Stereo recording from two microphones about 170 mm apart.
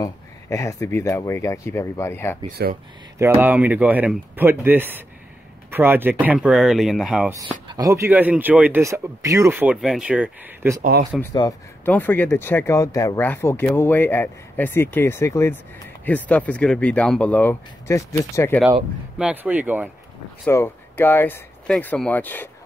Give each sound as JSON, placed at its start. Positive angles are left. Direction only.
{"t": 0.0, "sound": "speech", "side_deg": 20}
{"t": 2.5, "sound": "speech", "side_deg": -65}
{"t": 3.3, "sound": "speech", "side_deg": -10}
{"t": 7.6, "sound": "speech", "side_deg": -20}
{"t": 10.8, "sound": "speech", "side_deg": -60}
{"t": 11.8, "sound": "speech", "side_deg": 10}
{"t": 19.1, "sound": "speech", "side_deg": -5}
{"t": 20.4, "sound": "speech", "side_deg": 15}